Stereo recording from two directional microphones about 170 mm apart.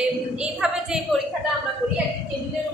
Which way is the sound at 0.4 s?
5° right (ahead or behind).